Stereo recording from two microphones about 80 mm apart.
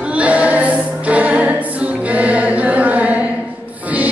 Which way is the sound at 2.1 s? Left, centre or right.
Centre.